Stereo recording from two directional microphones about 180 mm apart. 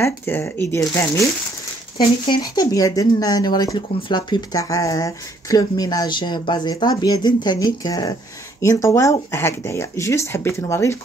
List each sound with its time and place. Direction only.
0.0 s speech: 15° left (ahead or behind)